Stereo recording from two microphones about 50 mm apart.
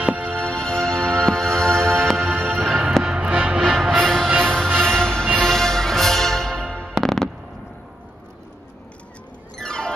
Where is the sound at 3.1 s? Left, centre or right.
Right.